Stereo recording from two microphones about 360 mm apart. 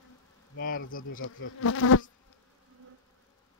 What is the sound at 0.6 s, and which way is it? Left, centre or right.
Speech, left.